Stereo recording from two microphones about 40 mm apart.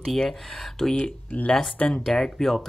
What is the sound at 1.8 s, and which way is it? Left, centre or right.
Speech, left.